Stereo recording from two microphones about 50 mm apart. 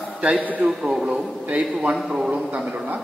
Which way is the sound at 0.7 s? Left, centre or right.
Centre.